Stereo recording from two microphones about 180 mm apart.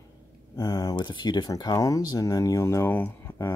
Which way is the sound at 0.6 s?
20° left (ahead or behind).